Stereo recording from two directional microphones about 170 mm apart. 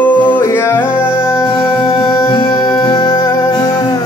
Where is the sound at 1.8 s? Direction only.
30° left (ahead or behind).